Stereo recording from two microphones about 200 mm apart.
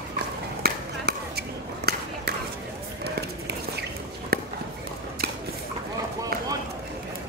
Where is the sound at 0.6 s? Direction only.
55° right (ahead or behind).